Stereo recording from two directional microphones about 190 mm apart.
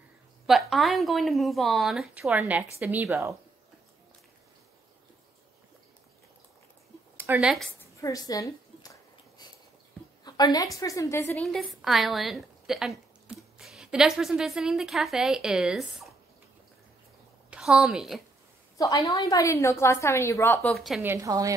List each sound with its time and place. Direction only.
0.5 s a woman's voice: centre (ahead or behind)
7.2 s speech: 10° right (ahead or behind)
7.8 s a sound: 15° left (ahead or behind)
10.2 s a woman's voice: 20° left (ahead or behind)
11.4 s a woman's voice: centre (ahead or behind)
17.5 s a woman's voice: 5° right (ahead or behind)
18.8 s a woman's voice: 15° left (ahead or behind)
20.7 s a woman's voice: centre (ahead or behind)
21.0 s a woman's voice: 15° right (ahead or behind)